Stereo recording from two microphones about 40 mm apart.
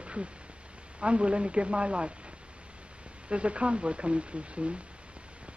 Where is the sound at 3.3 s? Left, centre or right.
Right.